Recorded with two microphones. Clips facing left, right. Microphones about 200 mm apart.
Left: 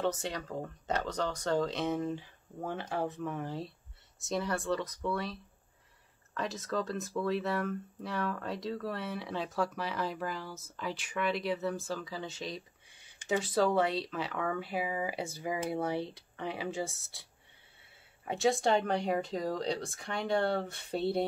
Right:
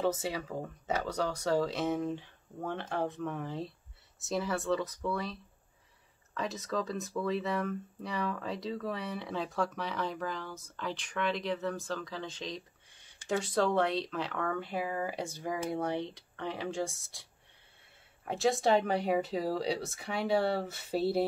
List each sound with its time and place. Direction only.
0.0 s speech: 5° right (ahead or behind)